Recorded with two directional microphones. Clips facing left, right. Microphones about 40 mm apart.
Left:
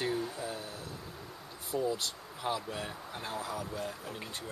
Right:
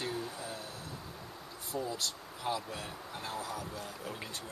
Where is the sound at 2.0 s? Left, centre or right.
Centre.